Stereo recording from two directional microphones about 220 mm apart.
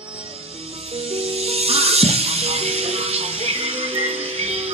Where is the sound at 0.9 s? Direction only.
25° right (ahead or behind).